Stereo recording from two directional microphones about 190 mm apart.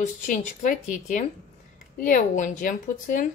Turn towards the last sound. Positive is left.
turn(degrees=45)  # may be behind; listen again after turning